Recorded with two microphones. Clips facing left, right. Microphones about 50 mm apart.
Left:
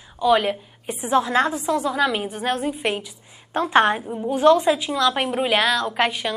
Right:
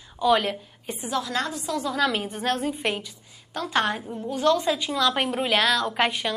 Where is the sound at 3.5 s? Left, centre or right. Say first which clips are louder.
Left 7 dB; left.